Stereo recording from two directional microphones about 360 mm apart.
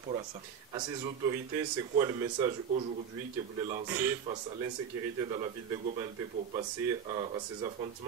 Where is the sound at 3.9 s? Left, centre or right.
Centre.